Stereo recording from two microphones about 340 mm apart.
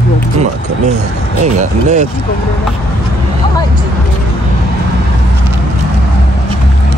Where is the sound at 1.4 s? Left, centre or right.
Right.